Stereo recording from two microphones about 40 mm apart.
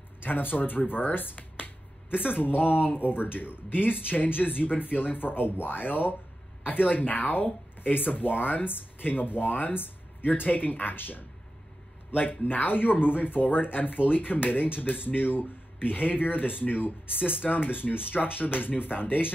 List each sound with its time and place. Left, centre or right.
0.2 s speech: left